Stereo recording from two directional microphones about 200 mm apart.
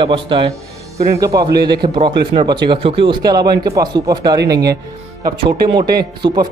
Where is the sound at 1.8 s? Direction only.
25° right (ahead or behind).